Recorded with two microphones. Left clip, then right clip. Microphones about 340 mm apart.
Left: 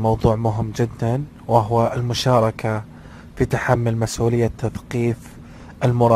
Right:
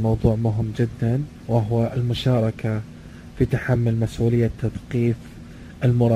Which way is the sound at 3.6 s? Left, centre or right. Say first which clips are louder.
Left 5 dB; left.